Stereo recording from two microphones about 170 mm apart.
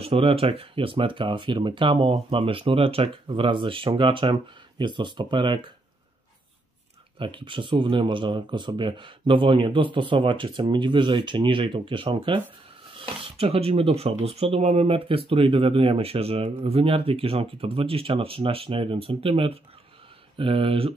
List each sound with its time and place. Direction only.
0.0 s speech: 35° right (ahead or behind)
7.2 s speech: 30° right (ahead or behind)
12.9 s filing: 30° right (ahead or behind)
14.2 s speech: 35° right (ahead or behind)